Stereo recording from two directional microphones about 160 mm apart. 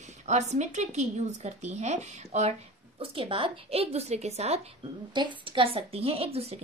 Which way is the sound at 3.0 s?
35° right (ahead or behind).